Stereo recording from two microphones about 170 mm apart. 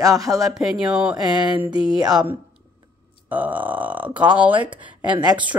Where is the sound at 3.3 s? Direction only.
10° right (ahead or behind).